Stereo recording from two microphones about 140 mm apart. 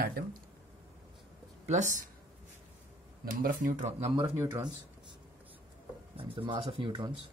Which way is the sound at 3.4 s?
65° right (ahead or behind).